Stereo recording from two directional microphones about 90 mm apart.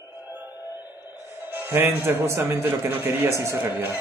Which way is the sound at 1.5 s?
25° right (ahead or behind).